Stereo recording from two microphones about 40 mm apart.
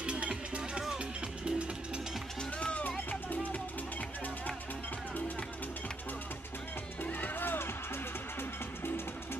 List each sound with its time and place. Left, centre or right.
0.0 s music: right
3.1 s music: left
7.0 s music: left